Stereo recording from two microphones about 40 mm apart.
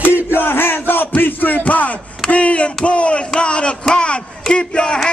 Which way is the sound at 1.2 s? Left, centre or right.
Left.